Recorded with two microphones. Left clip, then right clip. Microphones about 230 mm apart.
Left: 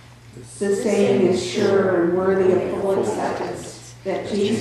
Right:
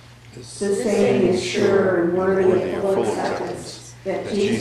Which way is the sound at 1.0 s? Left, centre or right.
Left.